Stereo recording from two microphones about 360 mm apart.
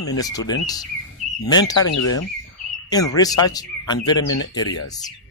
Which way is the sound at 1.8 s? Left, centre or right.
Left.